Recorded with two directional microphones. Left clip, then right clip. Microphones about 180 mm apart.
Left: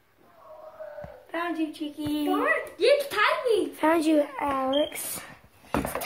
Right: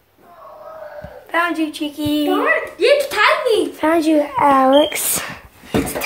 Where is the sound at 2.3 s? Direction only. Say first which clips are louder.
Right 8 dB; 35° left (ahead or behind).